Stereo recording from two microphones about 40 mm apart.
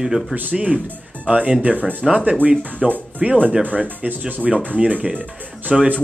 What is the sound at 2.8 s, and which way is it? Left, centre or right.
Speech, centre.